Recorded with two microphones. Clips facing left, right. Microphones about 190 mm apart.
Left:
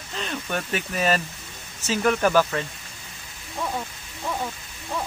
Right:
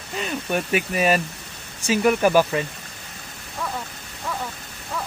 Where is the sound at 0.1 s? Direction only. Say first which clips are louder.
Right 4 dB; 10° right (ahead or behind).